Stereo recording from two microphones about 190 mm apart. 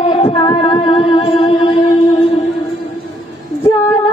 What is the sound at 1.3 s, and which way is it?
Music, 25° left (ahead or behind).